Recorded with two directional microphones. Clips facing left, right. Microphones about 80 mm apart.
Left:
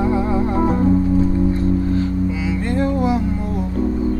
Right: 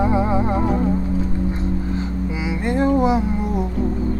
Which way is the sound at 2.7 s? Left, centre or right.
Right.